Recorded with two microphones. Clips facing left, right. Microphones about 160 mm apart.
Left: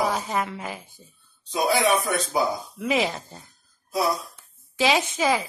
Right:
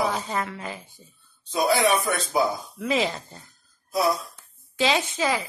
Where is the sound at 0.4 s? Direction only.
15° left (ahead or behind).